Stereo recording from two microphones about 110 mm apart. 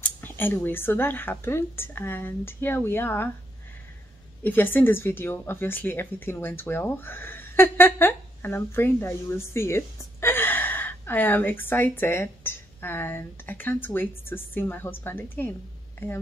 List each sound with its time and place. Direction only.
0.0 s speech: 15° left (ahead or behind)
4.4 s speech: 20° left (ahead or behind)